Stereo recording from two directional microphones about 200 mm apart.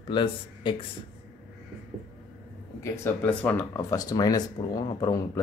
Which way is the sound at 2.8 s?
10° left (ahead or behind).